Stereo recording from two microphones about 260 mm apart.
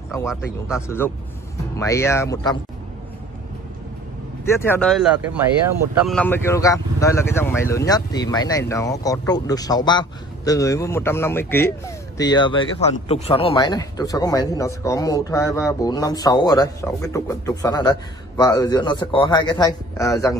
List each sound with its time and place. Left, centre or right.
0.7 s speech: centre
4.5 s speech: centre